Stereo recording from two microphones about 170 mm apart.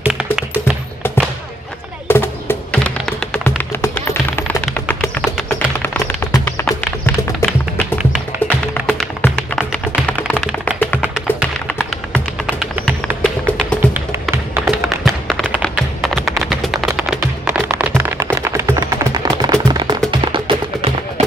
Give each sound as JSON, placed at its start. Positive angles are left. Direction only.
{"t": 0.0, "sound": "music", "side_deg": -5}
{"t": 2.0, "sound": "music", "side_deg": 10}
{"t": 6.3, "sound": "music", "side_deg": 15}
{"t": 8.0, "sound": "music", "side_deg": -5}
{"t": 9.6, "sound": "music", "side_deg": 5}
{"t": 11.0, "sound": "music", "side_deg": -5}
{"t": 11.6, "sound": "music", "side_deg": 10}
{"t": 12.4, "sound": "music", "side_deg": -10}
{"t": 13.2, "sound": "music", "side_deg": 5}
{"t": 14.3, "sound": "music", "side_deg": -15}
{"t": 14.7, "sound": "music", "side_deg": 0}